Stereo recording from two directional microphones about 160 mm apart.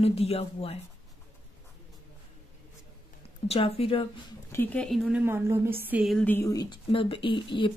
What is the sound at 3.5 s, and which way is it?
Speech, 35° left (ahead or behind).